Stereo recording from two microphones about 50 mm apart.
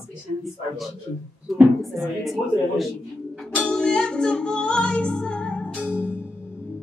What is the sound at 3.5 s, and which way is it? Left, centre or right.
Music, centre.